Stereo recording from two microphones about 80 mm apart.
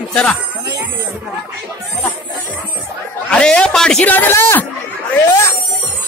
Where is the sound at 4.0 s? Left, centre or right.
Left.